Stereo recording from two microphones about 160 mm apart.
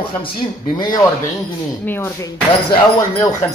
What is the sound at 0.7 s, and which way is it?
Speech, 25° left (ahead or behind).